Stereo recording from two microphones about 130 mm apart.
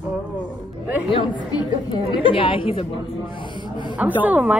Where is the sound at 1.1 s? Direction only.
35° left (ahead or behind).